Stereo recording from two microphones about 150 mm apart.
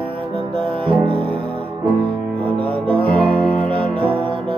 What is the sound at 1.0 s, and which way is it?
Music, 35° right (ahead or behind).